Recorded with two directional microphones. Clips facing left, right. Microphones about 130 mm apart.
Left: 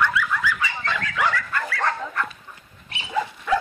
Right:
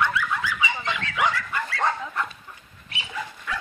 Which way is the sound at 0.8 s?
15° right (ahead or behind).